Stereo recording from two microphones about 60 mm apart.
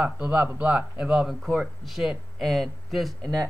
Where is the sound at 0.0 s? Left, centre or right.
Right.